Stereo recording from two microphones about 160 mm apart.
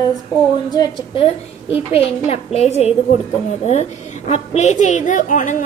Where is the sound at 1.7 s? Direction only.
40° left (ahead or behind); by 5.5 s 55° left (ahead or behind).